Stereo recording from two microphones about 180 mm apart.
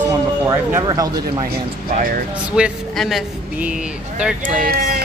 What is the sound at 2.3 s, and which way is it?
Speech, 5° right (ahead or behind).